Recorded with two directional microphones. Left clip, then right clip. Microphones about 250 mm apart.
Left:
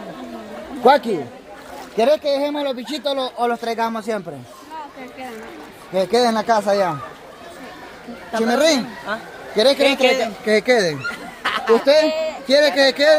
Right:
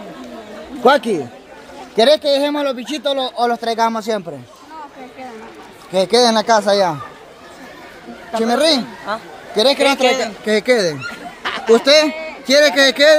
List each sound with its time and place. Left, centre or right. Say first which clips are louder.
0.8 s a man's voice: right 1 dB; centre
5.9 s a man's voice: right 4 dB; centre
8.3 s a woman's voice: right 2 dB; centre
11.4 s a sound: even; centre
11.8 s a man's voice: right 2 dB; right